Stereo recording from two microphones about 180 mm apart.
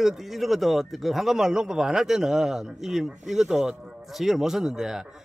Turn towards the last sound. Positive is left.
turn(degrees=-5)  # may be behind; listen again after turning